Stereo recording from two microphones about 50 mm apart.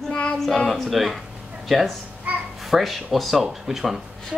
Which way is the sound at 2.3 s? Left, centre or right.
Right.